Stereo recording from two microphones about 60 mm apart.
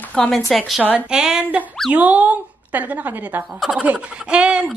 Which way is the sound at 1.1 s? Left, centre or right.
Centre.